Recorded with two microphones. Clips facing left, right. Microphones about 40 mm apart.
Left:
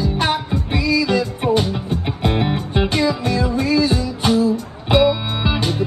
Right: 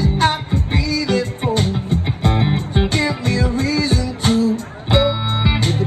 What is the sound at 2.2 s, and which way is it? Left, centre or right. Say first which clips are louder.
Music: even; left.